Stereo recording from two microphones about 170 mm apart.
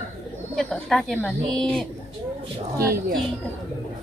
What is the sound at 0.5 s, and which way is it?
Speech, centre (ahead or behind).